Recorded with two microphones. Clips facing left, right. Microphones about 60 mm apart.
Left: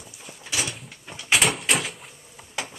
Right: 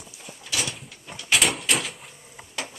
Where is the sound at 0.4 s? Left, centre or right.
Centre.